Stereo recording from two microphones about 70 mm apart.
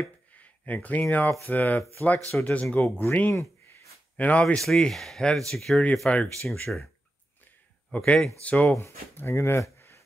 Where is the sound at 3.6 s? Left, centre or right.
Left.